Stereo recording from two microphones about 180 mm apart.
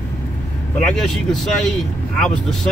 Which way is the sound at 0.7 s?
5° left (ahead or behind).